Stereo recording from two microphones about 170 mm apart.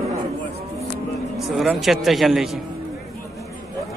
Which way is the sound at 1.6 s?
Centre (ahead or behind).